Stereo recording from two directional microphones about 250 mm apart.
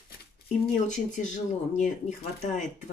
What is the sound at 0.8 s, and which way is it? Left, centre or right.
Speech, left.